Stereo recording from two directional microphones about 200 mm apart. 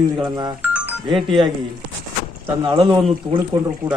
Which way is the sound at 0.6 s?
10° right (ahead or behind).